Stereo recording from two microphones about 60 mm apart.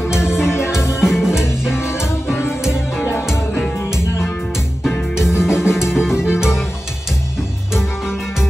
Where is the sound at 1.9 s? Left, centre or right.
Left.